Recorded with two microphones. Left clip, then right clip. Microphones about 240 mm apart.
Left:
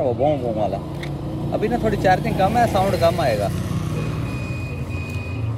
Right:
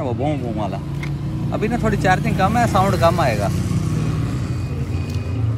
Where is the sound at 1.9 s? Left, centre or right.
Centre.